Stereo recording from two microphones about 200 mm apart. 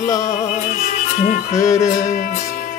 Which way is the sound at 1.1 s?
40° left (ahead or behind).